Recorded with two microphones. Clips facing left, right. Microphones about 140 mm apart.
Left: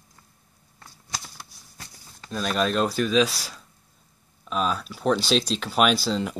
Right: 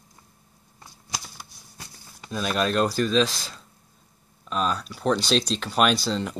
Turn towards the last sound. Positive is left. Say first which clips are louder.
# left 1 dB
turn(degrees=5)  # may be behind; listen again after turning